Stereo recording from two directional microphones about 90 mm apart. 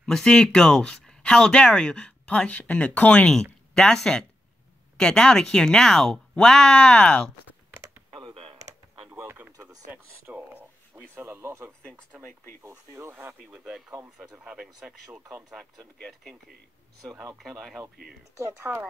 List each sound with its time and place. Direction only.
0.0 s speech: 5° left (ahead or behind)
9.1 s a sound: 25° right (ahead or behind)
11.1 s speech: 25° right (ahead or behind)
11.8 s speech: 10° left (ahead or behind)
12.6 s speech: 25° right (ahead or behind); by 15.0 s 5° right (ahead or behind)
16.0 s speech: centre (ahead or behind)
18.7 s speech: 20° right (ahead or behind)